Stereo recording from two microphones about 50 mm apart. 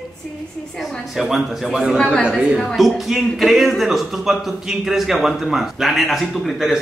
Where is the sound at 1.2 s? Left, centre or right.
Centre.